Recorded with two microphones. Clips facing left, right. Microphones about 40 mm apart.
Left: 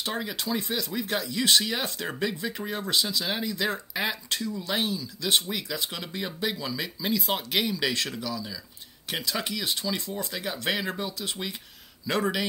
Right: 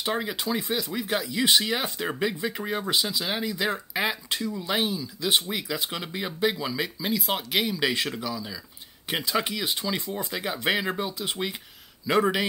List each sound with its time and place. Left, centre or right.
0.0 s speech: centre